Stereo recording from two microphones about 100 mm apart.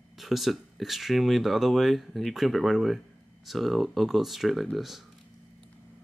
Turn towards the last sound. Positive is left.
turn(degrees=0)  # may be behind; listen again after turning